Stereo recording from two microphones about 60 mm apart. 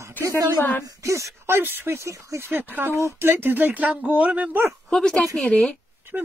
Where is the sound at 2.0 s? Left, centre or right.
Right.